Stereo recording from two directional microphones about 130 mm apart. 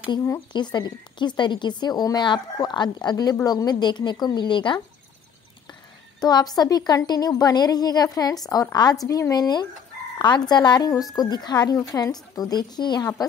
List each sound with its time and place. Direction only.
0.5 s a woman's voice: 35° left (ahead or behind)
6.2 s a woman's voice: 30° left (ahead or behind)